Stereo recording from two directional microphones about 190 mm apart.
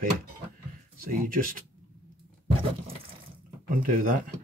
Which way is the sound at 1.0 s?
45° right (ahead or behind).